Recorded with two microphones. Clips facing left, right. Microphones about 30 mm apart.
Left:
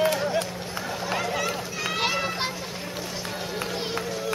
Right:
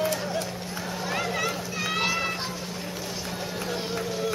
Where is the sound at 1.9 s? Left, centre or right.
Left.